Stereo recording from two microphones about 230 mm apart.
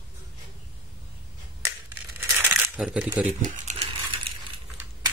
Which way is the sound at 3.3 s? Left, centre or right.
Right.